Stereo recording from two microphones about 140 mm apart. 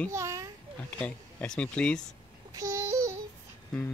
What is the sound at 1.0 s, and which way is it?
Speech, 10° left (ahead or behind).